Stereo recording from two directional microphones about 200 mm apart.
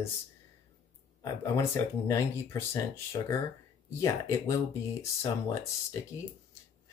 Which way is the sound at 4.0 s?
15° left (ahead or behind).